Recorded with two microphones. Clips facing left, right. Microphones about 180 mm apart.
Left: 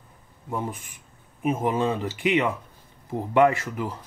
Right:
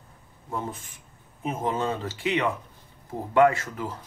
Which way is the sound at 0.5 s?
15° left (ahead or behind).